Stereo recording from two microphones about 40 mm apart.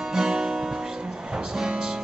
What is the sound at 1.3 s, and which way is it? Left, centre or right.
Music, centre.